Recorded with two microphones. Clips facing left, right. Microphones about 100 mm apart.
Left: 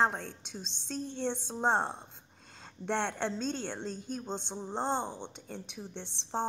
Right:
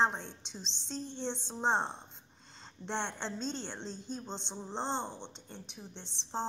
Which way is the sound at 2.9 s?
55° left (ahead or behind).